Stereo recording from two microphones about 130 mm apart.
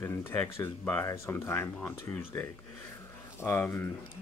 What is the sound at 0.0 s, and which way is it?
Speech, 15° left (ahead or behind).